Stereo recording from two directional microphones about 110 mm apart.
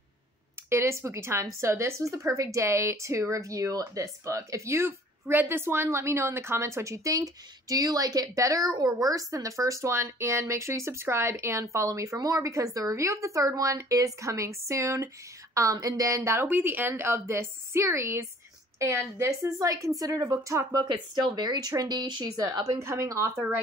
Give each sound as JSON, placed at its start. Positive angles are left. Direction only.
{"t": 0.7, "sound": "speech", "side_deg": -25}
{"t": 22.6, "sound": "speech", "side_deg": -25}